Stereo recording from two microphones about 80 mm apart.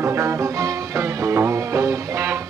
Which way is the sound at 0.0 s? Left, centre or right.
Right.